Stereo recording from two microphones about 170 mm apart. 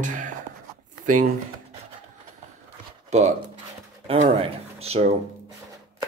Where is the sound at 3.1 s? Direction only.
40° right (ahead or behind).